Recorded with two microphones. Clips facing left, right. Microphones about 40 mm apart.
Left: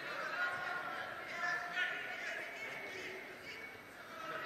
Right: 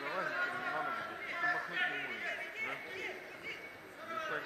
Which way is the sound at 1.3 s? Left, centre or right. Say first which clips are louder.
Right 3 dB; right.